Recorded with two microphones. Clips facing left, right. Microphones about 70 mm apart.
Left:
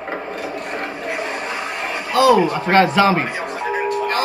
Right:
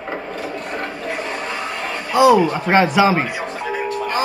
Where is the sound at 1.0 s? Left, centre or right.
Centre.